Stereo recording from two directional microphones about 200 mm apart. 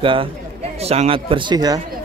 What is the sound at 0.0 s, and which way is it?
A man's voice, 25° right (ahead or behind).